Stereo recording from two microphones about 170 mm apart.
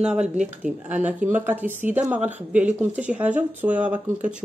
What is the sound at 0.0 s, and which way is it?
Speech, 5° right (ahead or behind).